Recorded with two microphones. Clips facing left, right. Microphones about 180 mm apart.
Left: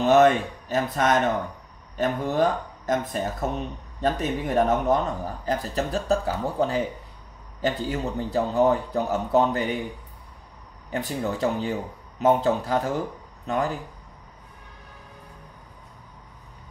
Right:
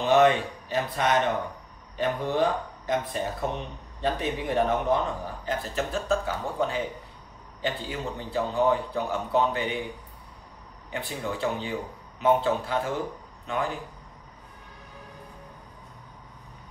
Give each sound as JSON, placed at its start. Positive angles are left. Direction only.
{"t": 0.0, "sound": "speech", "side_deg": 45}
{"t": 10.9, "sound": "speech", "side_deg": 40}